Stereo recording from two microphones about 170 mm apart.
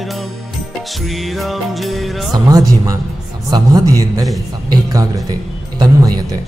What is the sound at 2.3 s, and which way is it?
A man's voice, 20° right (ahead or behind).